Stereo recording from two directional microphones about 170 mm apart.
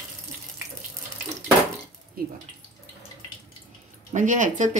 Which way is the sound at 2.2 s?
60° right (ahead or behind).